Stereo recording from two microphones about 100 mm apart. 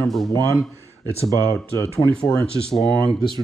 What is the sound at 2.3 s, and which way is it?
Speech, 5° left (ahead or behind).